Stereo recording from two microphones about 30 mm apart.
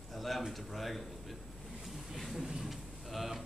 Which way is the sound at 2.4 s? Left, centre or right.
Centre.